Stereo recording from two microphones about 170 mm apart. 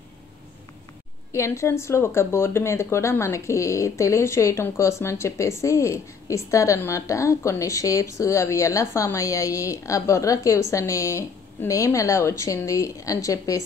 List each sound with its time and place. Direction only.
1.3 s speech: 15° left (ahead or behind)